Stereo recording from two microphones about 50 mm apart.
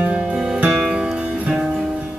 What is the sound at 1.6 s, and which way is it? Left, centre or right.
Music, centre.